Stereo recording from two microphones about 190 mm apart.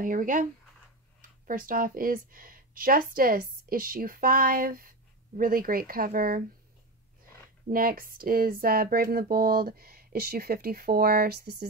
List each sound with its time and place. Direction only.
0.0 s speech: 45° right (ahead or behind)
1.5 s speech: 45° right (ahead or behind)
7.6 s speech: 50° right (ahead or behind)